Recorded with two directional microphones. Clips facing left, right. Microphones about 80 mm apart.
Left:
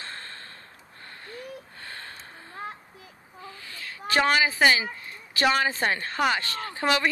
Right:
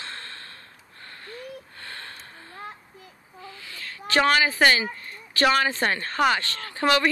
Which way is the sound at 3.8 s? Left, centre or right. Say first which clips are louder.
Right 2 dB; centre.